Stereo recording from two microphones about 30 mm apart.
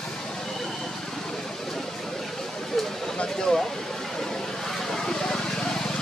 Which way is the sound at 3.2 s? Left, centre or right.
Centre.